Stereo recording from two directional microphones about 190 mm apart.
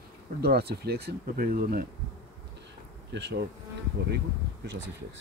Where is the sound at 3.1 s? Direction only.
65° right (ahead or behind).